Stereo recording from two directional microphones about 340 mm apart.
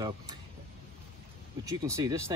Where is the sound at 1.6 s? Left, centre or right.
Centre.